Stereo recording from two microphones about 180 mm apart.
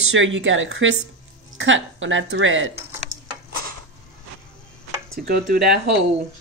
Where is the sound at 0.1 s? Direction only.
90° right.